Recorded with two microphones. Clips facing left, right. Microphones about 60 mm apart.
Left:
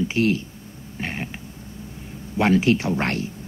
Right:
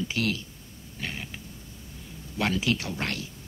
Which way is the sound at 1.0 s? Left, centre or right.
Left.